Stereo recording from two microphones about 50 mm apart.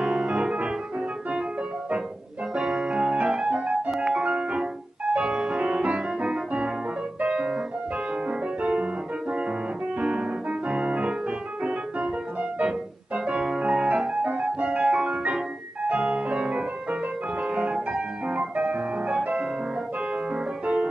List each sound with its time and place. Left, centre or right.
0.0 s piano: centre
2.5 s keyboard: centre
4.1 s music: right
9.9 s music: right
10.7 s piano: right
15.8 s music: right
18.3 s keyboard: right
20.6 s music: right